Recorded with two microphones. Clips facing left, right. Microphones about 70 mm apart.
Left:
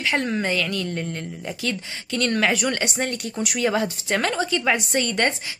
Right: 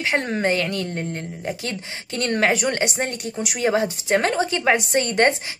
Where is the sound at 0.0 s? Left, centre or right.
Right.